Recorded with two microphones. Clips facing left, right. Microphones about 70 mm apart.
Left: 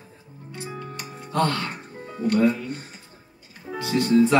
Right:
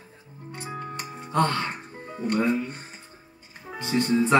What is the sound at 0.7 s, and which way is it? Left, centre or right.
Music, right.